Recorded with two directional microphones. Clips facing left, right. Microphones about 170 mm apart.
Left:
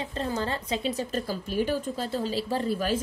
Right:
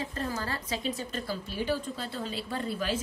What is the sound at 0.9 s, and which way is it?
Speech, 40° left (ahead or behind).